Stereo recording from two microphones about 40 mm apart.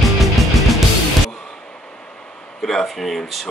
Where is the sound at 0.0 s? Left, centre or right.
Centre.